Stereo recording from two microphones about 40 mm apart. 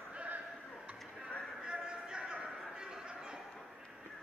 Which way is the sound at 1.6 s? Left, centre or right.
Centre.